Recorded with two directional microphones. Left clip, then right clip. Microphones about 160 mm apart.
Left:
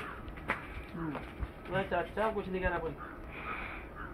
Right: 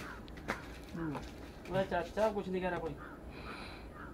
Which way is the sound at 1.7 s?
30° right (ahead or behind).